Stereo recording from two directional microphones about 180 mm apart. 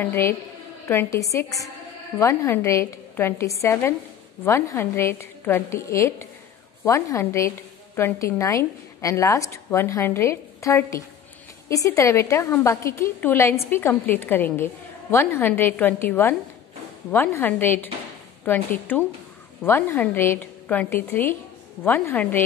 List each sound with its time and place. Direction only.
0.0 s a woman's voice: 10° left (ahead or behind)